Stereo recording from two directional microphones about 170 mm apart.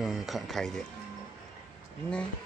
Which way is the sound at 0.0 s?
Centre (ahead or behind).